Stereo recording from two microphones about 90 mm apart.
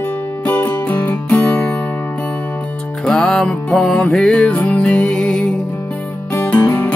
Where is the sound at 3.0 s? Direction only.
5° left (ahead or behind).